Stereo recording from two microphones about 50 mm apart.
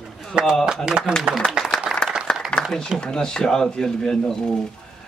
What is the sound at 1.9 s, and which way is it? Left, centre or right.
Clapping, centre.